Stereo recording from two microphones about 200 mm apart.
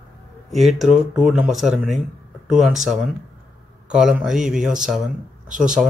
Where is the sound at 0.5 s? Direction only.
Centre (ahead or behind).